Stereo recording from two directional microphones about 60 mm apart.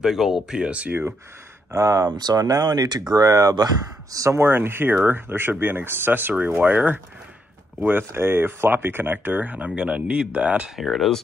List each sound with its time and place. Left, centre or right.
0.0 s speech: centre
1.7 s speech: right
4.3 s speech: right
8.1 s speech: right; by 10.7 s centre
10.8 s speech: centre